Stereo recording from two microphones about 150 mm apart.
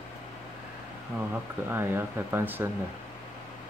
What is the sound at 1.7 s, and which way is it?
Speech, 15° right (ahead or behind).